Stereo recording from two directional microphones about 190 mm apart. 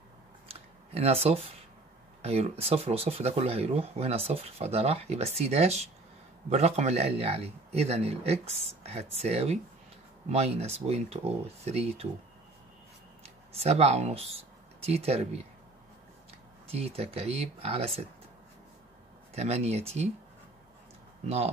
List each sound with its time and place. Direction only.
0.5 s a sound: 30° right (ahead or behind)
2.2 s speech: 30° right (ahead or behind)
13.2 s speech: 35° right (ahead or behind)
16.7 s speech: 30° right (ahead or behind)
19.3 s speech: 35° right (ahead or behind)